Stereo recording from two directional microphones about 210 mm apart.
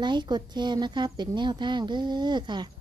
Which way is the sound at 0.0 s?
20° right (ahead or behind).